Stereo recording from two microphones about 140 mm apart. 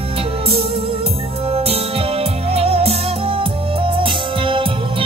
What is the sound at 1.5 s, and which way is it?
Music, 45° right (ahead or behind).